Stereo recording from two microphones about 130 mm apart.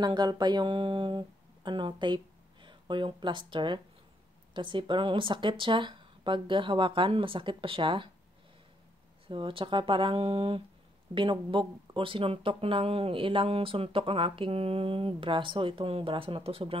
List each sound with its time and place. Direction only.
0.0 s speech: 30° right (ahead or behind)
9.3 s speech: 40° right (ahead or behind)